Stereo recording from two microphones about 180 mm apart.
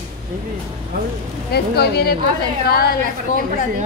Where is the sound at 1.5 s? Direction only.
65° left (ahead or behind).